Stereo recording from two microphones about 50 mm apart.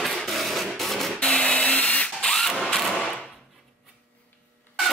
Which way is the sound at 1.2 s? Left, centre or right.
Centre.